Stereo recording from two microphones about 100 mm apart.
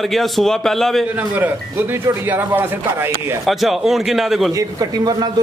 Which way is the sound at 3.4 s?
Centre (ahead or behind).